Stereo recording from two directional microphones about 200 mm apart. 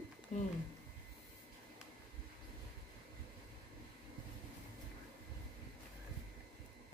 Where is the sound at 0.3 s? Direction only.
35° left (ahead or behind).